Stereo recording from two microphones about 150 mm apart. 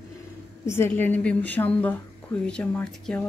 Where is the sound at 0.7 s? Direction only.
15° left (ahead or behind).